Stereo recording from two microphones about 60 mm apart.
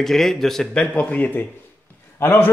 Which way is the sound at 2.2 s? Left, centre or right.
Left.